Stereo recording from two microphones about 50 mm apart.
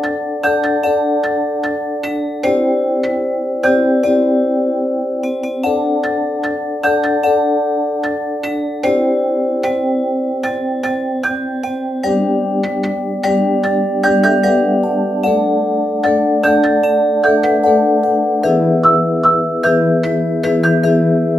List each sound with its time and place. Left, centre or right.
4.1 s music: left
7.0 s music: centre
14.2 s music: centre
14.5 s music: left
16.8 s music: centre
17.6 s music: left
18.7 s music: centre
20.9 s music: left